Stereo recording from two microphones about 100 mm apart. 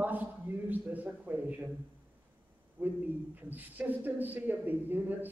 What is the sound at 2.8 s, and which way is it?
Speech, 20° right (ahead or behind).